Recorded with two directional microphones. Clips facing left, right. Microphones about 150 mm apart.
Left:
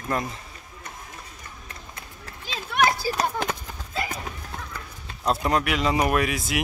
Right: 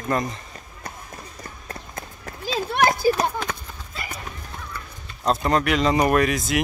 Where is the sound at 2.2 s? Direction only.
35° right (ahead or behind).